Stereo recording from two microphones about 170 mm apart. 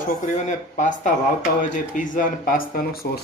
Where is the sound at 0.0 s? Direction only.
45° left (ahead or behind).